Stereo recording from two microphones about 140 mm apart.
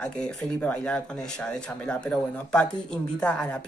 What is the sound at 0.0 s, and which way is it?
Speech, 10° left (ahead or behind).